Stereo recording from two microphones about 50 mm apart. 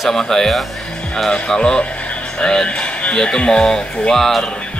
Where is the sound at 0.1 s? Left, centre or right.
Centre.